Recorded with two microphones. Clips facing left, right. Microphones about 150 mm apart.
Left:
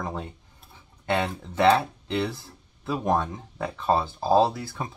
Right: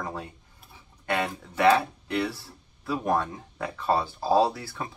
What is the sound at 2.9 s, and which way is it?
Speech, 20° left (ahead or behind).